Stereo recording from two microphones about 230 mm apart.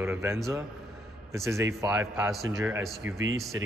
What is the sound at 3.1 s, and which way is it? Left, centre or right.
Speech, right.